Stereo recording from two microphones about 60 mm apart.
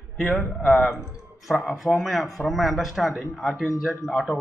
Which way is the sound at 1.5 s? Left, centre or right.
Centre.